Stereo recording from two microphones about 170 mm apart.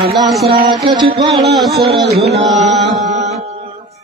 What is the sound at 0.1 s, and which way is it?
Music, centre (ahead or behind).